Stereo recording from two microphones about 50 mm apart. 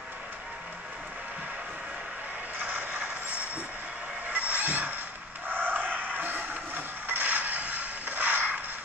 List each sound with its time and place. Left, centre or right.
2.6 s vehicle: centre
4.3 s music: right
5.5 s a sound: right